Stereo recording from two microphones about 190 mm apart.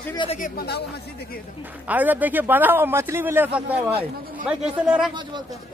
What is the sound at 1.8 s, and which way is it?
A man's voice, 10° right (ahead or behind).